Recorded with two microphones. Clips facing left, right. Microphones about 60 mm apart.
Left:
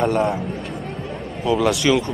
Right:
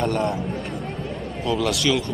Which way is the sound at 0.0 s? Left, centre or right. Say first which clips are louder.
Left 4 dB; centre.